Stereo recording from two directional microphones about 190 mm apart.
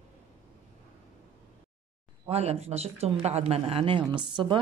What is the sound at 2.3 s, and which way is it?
Speech, 30° right (ahead or behind).